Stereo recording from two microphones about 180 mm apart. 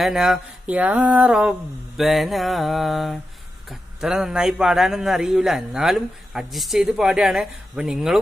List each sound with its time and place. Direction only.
0.0 s a man's voice: centre (ahead or behind)